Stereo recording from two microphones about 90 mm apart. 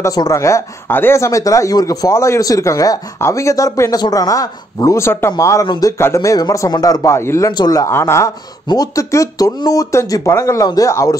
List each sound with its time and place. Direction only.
0.0 s speech: 40° left (ahead or behind)
7.5 s speech: 45° left (ahead or behind)
7.9 s a woman's voice: 30° left (ahead or behind)
8.6 s speech: 40° left (ahead or behind)